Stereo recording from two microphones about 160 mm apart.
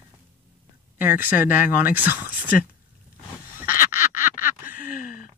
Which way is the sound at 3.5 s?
15° right (ahead or behind).